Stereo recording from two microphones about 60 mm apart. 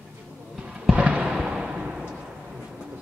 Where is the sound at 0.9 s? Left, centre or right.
Right.